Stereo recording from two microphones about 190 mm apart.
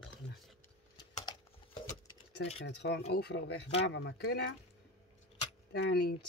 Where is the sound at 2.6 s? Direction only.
65° left (ahead or behind).